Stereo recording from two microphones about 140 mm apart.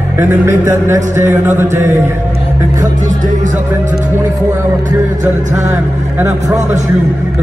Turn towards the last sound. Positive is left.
turn(degrees=-15)  # may be behind; listen again after turning